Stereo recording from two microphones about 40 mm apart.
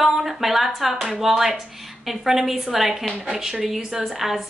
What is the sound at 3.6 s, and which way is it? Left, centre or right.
Speech, centre.